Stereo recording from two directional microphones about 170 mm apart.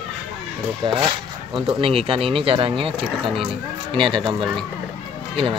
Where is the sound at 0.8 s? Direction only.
30° right (ahead or behind).